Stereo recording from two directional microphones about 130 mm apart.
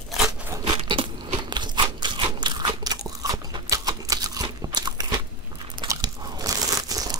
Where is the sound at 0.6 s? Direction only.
40° right (ahead or behind).